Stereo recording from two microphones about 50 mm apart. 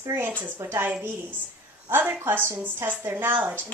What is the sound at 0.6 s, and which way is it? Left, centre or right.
Speech, right.